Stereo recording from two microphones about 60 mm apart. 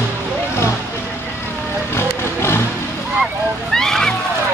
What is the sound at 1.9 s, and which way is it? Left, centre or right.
Music, left.